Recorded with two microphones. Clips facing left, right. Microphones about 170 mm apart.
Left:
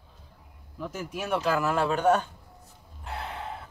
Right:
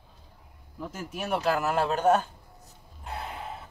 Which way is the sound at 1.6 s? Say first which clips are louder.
Even; 40° right (ahead or behind).